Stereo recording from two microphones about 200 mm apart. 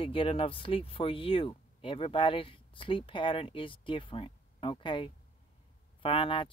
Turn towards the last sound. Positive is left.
turn(degrees=25)  # may be behind; listen again after turning